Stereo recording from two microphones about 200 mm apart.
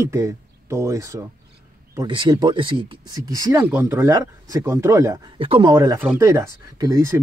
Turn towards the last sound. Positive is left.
turn(degrees=-15)  # may be behind; listen again after turning